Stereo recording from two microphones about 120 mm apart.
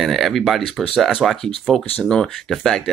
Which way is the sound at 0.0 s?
Centre (ahead or behind).